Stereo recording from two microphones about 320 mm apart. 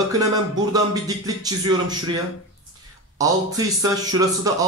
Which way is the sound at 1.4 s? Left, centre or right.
Centre.